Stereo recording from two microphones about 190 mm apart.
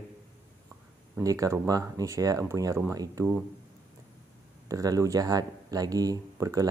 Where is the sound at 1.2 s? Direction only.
15° right (ahead or behind).